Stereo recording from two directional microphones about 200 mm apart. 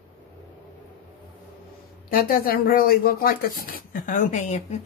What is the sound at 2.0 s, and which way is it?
Speech, 45° left (ahead or behind).